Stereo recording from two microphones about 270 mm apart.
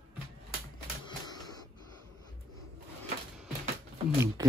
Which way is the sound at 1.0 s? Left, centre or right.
Centre.